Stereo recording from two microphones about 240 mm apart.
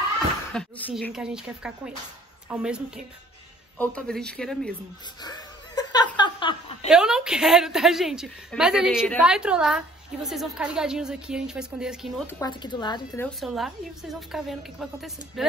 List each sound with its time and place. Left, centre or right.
0.5 s a woman's voice: centre
5.2 s chuckle: centre
6.9 s a woman's voice: centre
12.3 s speech: centre
13.4 s a woman's voice: centre